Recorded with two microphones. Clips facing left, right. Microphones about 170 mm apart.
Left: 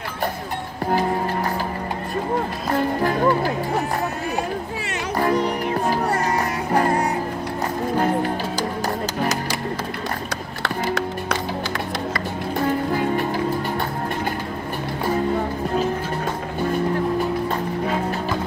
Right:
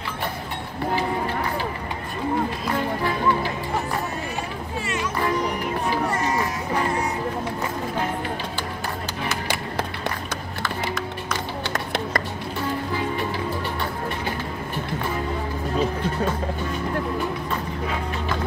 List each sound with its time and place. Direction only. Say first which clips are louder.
2.7 s music: left 7 dB; 45° left (ahead or behind)
6.0 s music: left 2 dB; 65° left (ahead or behind)
6.7 s music: left 6 dB; 50° left (ahead or behind)
9.2 s music: left 3 dB; 40° left (ahead or behind)
10.6 s music: left 5 dB; 70° left (ahead or behind)
12.9 s music: left 5 dB; 45° left (ahead or behind)